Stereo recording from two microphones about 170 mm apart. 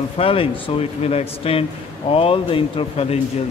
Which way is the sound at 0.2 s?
35° left (ahead or behind).